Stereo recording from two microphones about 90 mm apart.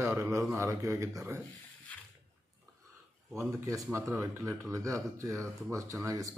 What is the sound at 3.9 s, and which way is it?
Speech, 35° right (ahead or behind).